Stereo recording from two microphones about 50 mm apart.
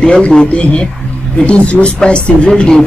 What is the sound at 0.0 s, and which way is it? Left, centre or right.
A man's voice, centre.